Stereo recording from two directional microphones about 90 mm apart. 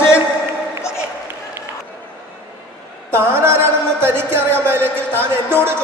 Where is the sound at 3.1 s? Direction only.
25° right (ahead or behind).